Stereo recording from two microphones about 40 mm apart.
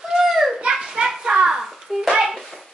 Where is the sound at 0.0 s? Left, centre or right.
Centre.